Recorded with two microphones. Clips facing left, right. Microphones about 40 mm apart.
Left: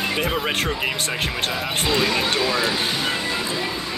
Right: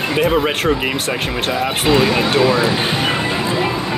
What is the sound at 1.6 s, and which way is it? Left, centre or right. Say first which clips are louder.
Speech: right 8 dB; centre.